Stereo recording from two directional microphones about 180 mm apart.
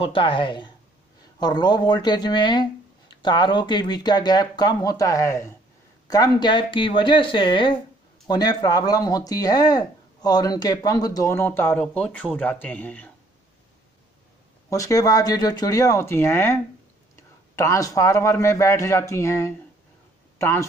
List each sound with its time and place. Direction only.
0.0 s speech: 30° left (ahead or behind); by 13.1 s 10° left (ahead or behind)
14.7 s a man's voice: 20° left (ahead or behind)